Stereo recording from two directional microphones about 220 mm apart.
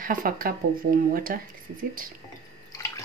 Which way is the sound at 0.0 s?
40° right (ahead or behind).